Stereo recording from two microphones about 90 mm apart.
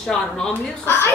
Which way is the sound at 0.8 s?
25° left (ahead or behind).